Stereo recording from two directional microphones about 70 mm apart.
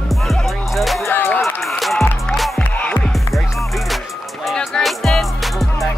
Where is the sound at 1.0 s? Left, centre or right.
Left.